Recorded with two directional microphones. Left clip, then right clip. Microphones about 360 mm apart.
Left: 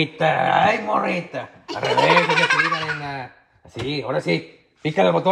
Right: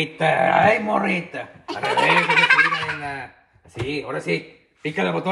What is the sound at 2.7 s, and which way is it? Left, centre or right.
Fowl, left.